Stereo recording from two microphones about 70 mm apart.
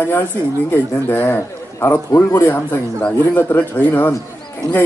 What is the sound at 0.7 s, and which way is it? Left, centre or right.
A man's voice, left.